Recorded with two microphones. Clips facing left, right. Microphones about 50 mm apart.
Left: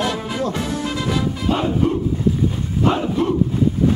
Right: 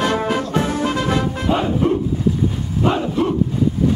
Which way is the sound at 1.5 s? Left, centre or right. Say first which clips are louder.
Right 1 dB; centre.